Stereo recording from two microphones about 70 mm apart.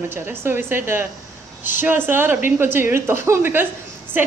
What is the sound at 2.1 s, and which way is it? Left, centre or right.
A woman's voice, right.